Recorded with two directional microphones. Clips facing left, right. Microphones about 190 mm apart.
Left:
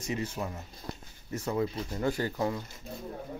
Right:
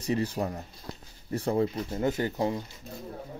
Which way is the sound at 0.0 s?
35° right (ahead or behind).